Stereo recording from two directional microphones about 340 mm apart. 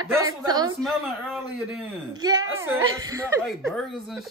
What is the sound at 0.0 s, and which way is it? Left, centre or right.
Speech, centre.